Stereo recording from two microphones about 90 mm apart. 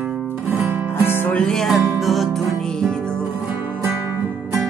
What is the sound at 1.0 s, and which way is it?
Music, 25° left (ahead or behind).